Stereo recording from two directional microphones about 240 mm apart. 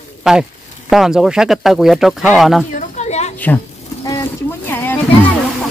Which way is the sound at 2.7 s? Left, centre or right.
Left.